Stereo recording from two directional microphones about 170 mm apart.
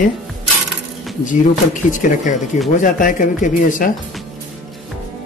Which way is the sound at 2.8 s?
50° left (ahead or behind).